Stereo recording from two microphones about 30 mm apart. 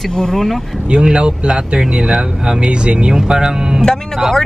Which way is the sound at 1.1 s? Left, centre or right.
Right.